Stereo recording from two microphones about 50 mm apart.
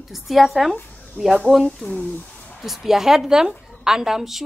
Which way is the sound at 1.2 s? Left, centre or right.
Left.